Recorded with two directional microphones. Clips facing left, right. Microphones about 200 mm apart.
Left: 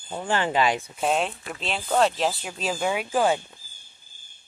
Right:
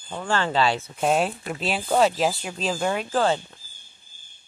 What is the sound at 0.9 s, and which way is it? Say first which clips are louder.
Speech: right 2 dB; centre (ahead or behind).